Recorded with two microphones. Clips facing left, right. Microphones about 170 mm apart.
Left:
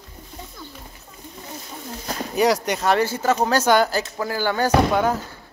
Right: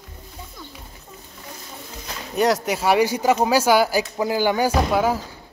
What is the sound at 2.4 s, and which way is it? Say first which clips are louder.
Speech: even; centre (ahead or behind).